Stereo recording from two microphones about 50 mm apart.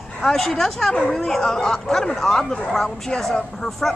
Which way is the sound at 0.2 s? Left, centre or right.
Centre.